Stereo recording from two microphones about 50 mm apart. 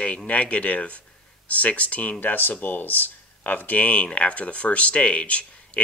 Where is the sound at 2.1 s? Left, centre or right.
Left.